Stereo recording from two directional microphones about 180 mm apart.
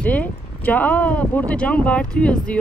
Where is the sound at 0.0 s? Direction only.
10° left (ahead or behind).